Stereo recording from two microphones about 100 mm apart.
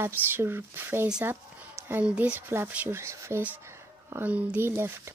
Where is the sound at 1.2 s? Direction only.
20° right (ahead or behind).